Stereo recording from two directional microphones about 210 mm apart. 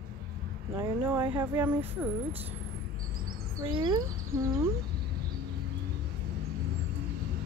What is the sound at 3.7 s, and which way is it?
Speech, 20° right (ahead or behind).